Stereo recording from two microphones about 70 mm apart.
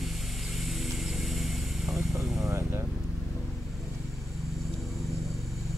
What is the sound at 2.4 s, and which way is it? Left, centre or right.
Vehicle, right.